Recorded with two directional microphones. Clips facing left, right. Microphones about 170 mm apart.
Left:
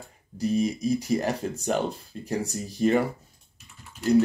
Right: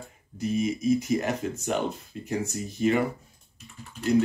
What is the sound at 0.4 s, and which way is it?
Speech, 35° left (ahead or behind).